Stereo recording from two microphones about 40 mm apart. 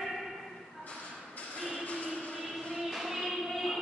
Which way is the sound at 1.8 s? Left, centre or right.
Left.